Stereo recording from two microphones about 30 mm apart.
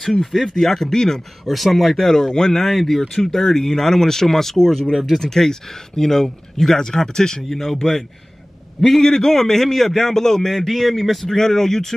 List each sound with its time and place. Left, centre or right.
0.0 s a man's voice: centre
1.4 s speech: centre
2.0 s a man's voice: centre
2.7 s a man's voice: centre
8.8 s a man's voice: centre
11.2 s a man's voice: centre